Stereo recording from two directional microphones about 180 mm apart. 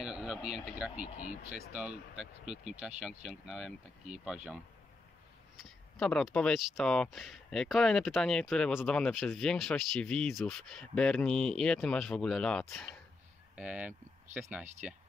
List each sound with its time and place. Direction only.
0.0 s speech: 5° right (ahead or behind)
2.5 s speech: 40° right (ahead or behind)
3.3 s speech: centre (ahead or behind)
5.6 s speech: 5° left (ahead or behind)